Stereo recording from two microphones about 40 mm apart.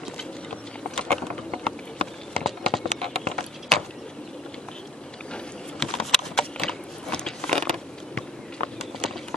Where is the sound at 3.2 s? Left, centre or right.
Left.